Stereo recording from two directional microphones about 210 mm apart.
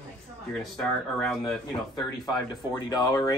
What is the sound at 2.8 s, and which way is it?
Speech, 20° left (ahead or behind).